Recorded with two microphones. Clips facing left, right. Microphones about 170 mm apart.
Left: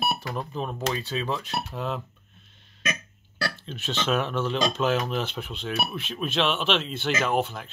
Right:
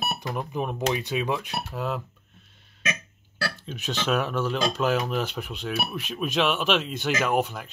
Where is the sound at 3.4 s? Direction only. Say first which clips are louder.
Even; 10° right (ahead or behind).